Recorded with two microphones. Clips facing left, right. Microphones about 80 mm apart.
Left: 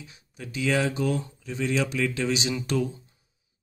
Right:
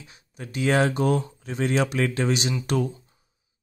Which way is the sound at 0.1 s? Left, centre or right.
Right.